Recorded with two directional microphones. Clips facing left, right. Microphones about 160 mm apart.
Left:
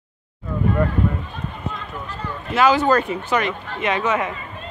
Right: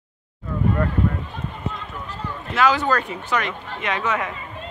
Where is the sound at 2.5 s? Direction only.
25° left (ahead or behind).